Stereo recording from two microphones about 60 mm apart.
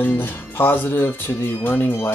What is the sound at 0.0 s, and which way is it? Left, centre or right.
Music, left.